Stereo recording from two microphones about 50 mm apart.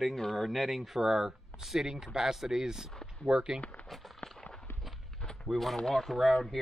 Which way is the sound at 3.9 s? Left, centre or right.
Centre.